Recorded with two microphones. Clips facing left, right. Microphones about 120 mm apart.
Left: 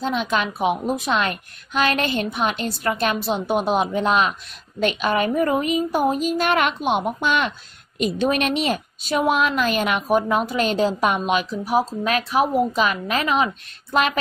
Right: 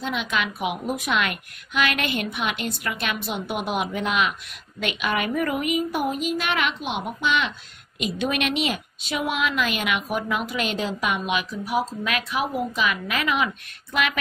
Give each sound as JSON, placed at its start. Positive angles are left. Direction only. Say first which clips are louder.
{"t": 0.0, "sound": "a woman's voice", "louder": "left 4 dB", "side_deg": 35}